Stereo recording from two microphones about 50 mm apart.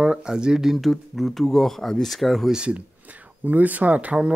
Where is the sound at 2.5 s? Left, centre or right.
Right.